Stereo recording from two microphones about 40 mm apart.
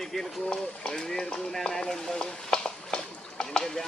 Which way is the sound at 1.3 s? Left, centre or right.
Centre.